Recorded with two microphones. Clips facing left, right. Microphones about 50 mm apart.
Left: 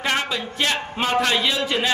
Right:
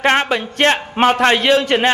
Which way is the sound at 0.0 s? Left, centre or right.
Right.